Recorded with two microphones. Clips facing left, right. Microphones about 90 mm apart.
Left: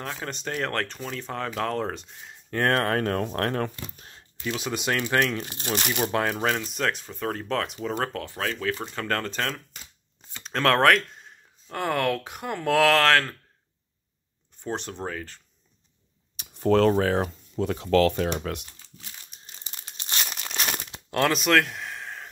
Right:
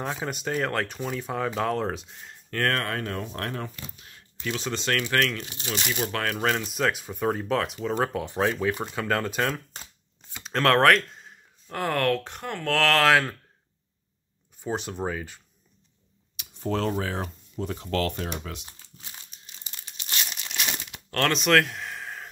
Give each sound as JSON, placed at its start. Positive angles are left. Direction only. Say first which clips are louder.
{"t": 0.0, "sound": "speech", "louder": "right 3 dB", "side_deg": -10}
{"t": 2.5, "sound": "speech", "louder": "left 3 dB", "side_deg": 20}
{"t": 2.8, "sound": "speech", "louder": "left 6 dB", "side_deg": 45}
{"t": 3.9, "sound": "speech", "louder": "left 2 dB", "side_deg": 35}
{"t": 4.4, "sound": "speech", "louder": "left 1 dB", "side_deg": 20}
{"t": 5.4, "sound": "speech", "louder": "left 3 dB", "side_deg": 45}
{"t": 6.0, "sound": "speech", "louder": "left 3 dB", "side_deg": 20}
{"t": 6.4, "sound": "speech", "louder": "right 1 dB", "side_deg": 0}
{"t": 8.3, "sound": "speech", "louder": "right 4 dB", "side_deg": -20}
{"t": 14.6, "sound": "speech", "louder": "right 2 dB", "side_deg": -5}
{"t": 16.5, "sound": "speech", "louder": "left 7 dB", "side_deg": 65}
{"t": 19.4, "sound": "crumpling", "louder": "left 2 dB", "side_deg": 35}
{"t": 21.1, "sound": "a sound", "louder": "even", "side_deg": 5}